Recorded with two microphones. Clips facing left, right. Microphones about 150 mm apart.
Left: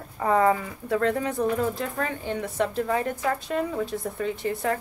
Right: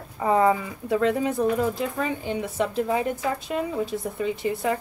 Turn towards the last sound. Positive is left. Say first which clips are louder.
# right 1 dB
turn(degrees=-5)  # may be behind; listen again after turning